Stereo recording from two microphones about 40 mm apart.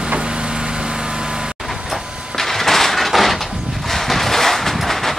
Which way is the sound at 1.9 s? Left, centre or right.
Centre.